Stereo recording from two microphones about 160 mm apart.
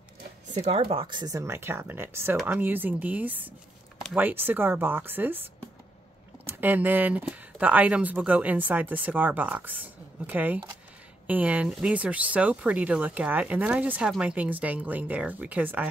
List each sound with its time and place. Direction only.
0.6 s speech: 40° right (ahead or behind); by 15.9 s 10° right (ahead or behind)